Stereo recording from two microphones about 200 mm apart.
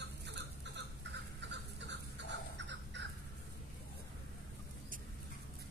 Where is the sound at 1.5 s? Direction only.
60° right (ahead or behind).